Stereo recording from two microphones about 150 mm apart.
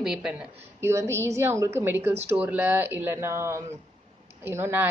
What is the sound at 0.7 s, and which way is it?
Speech, 15° right (ahead or behind).